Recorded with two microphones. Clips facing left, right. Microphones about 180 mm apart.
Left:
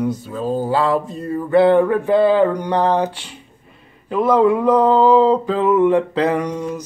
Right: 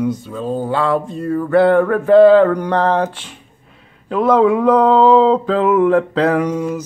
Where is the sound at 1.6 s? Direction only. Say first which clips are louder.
Even; 20° left (ahead or behind).